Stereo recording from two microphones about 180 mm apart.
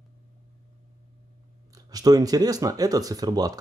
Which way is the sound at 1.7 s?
20° right (ahead or behind).